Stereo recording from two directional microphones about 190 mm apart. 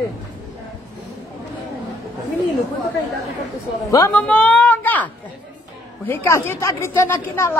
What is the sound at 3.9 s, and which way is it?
A woman's voice, 15° left (ahead or behind).